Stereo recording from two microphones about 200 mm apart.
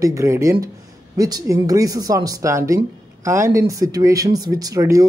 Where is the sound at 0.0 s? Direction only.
15° right (ahead or behind).